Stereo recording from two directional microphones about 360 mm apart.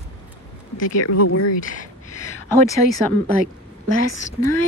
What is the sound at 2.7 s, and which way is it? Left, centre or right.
Speech, centre.